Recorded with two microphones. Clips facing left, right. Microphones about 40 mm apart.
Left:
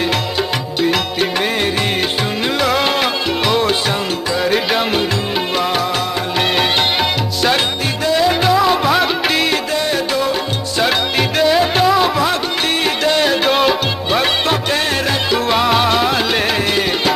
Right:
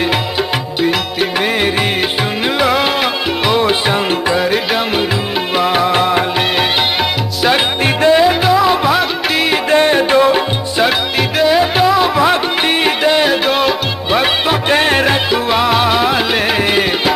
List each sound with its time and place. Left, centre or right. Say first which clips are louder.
2.6 s music: right 2 dB; centre
8.0 s music: right 5 dB; right
8.3 s music: right 2 dB; centre
9.7 s music: right 7 dB; right
10.8 s music: right 1 dB; centre
12.8 s music: right 2 dB; centre
14.7 s music: right 5 dB; right
15.3 s music: right 1 dB; centre